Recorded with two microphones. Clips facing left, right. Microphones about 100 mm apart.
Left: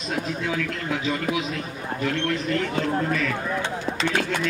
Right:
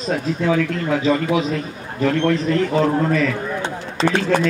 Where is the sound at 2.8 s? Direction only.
45° right (ahead or behind).